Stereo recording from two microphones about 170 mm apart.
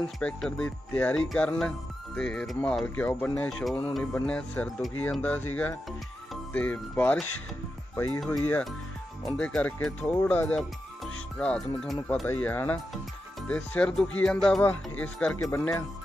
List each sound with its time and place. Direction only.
0.2 s speech: 5° left (ahead or behind)